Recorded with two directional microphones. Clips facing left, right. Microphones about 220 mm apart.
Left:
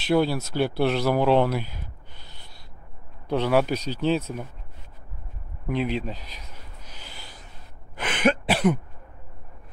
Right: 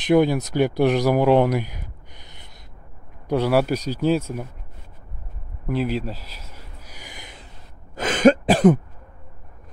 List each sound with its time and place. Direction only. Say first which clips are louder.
0.0 s speech: right 5 dB; 15° right (ahead or behind)
5.7 s a sound: right 2 dB; 5° right (ahead or behind)
8.0 s throat clearing: right 8 dB; 45° right (ahead or behind)